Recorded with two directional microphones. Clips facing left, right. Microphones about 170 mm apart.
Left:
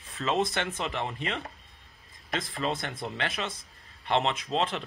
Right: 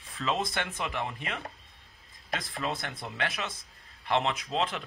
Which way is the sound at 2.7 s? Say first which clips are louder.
Left 3 dB; 10° right (ahead or behind).